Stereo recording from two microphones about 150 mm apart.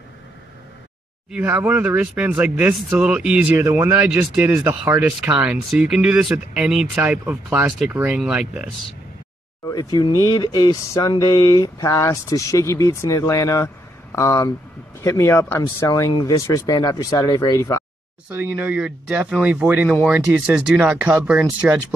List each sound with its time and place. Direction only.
1.3 s speech: 10° right (ahead or behind)
9.7 s speech: 25° left (ahead or behind)
18.3 s speech: 15° right (ahead or behind)